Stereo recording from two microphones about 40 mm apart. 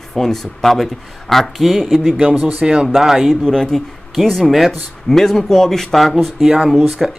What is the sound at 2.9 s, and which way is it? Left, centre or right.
Speech, centre.